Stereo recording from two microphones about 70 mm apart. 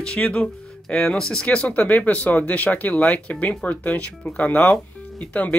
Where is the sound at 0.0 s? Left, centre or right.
Centre.